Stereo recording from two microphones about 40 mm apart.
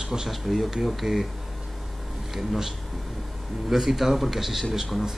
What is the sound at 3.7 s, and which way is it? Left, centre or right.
Speech, centre.